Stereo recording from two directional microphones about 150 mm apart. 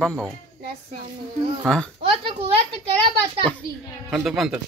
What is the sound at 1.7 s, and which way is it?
Speech, 5° left (ahead or behind).